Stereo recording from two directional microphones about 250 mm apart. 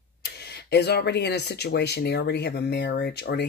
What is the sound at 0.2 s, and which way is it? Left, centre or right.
Speech, left.